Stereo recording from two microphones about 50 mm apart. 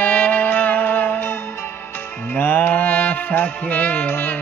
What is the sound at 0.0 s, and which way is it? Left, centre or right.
Music, left.